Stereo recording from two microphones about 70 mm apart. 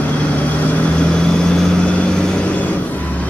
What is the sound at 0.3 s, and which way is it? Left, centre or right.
Vehicle, left.